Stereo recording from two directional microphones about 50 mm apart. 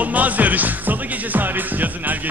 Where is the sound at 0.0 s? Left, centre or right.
Right.